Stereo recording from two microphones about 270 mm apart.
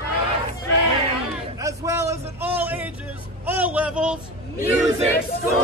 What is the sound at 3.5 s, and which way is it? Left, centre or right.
Vehicle, centre.